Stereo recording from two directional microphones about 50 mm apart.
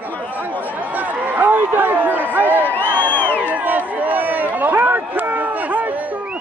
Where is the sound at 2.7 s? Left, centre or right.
Left.